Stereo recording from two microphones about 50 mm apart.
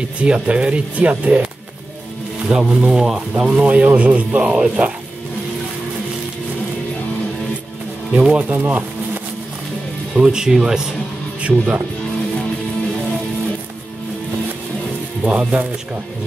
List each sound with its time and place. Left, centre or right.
0.2 s speech: right
3.6 s speech: right
4.5 s speech: centre
8.1 s speech: right
10.1 s speech: centre
11.4 s speech: right
15.2 s speech: right